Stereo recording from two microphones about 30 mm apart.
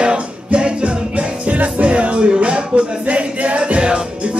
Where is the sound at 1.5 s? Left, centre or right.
Right.